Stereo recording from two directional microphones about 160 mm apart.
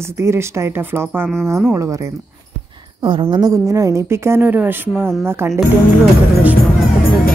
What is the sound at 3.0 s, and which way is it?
A woman's voice, 30° right (ahead or behind).